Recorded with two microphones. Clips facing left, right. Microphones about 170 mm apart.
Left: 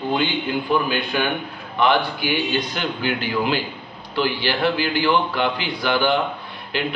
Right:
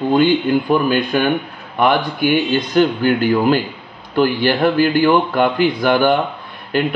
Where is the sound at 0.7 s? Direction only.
50° right (ahead or behind).